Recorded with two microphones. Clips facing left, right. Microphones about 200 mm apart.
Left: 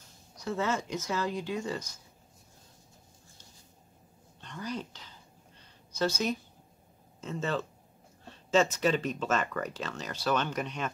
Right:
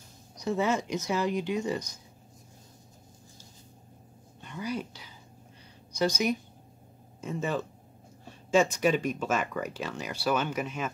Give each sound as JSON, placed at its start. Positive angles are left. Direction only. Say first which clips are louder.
{"t": 0.4, "sound": "speech", "louder": "right 4 dB", "side_deg": -15}
{"t": 4.4, "sound": "speech", "louder": "right 3 dB", "side_deg": -10}